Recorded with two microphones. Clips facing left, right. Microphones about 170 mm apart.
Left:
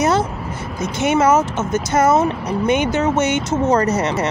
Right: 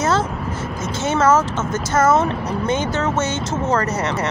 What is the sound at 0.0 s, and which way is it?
Speech, 15° left (ahead or behind).